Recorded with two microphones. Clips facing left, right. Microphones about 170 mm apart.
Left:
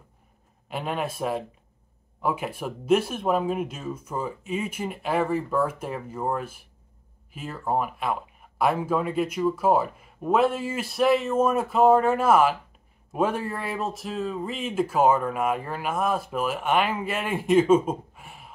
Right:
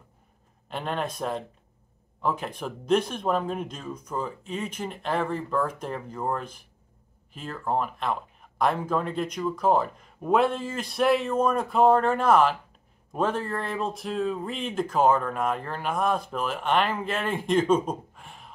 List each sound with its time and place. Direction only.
0.7 s speech: 5° left (ahead or behind)